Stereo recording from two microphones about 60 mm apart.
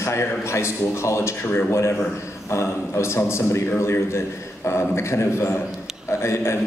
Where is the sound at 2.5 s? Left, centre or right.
Left.